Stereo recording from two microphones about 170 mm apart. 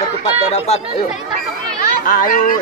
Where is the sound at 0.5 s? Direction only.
40° left (ahead or behind).